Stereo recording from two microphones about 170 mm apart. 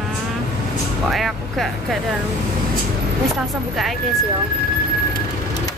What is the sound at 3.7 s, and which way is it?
Speech, centre (ahead or behind).